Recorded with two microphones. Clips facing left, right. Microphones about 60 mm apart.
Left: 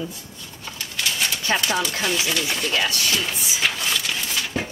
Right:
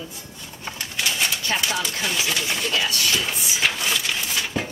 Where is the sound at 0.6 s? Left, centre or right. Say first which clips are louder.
Right 2 dB; right.